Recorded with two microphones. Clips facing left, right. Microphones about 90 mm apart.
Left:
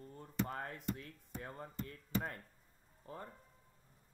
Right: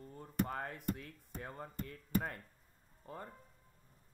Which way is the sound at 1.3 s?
35° right (ahead or behind).